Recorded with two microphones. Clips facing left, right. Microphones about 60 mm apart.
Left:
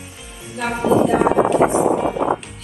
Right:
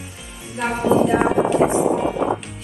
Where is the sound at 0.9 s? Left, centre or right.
Right.